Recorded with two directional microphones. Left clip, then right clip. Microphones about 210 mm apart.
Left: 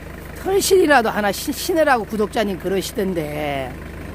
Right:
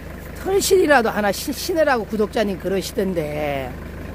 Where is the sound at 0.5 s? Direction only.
5° left (ahead or behind).